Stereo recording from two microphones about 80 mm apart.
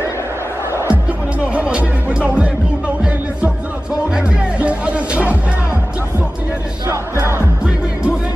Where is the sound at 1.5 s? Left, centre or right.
Centre.